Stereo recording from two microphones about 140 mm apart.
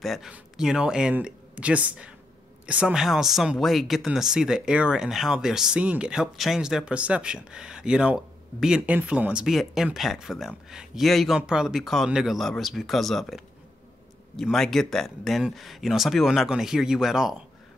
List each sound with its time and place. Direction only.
0.0 s speech: centre (ahead or behind)